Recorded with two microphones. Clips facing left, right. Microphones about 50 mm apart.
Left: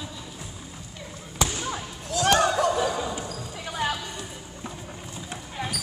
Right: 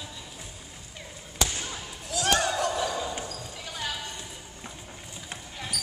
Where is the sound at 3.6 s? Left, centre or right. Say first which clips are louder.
Left 8 dB; left.